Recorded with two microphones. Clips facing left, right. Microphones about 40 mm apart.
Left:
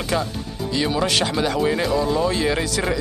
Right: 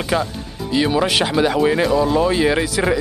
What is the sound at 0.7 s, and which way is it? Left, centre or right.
Speech, centre.